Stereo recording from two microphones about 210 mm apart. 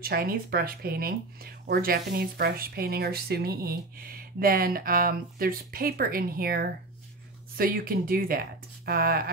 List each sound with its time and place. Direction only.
0.0 s speech: 45° right (ahead or behind)